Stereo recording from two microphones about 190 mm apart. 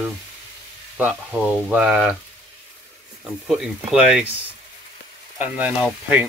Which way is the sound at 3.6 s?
5° right (ahead or behind).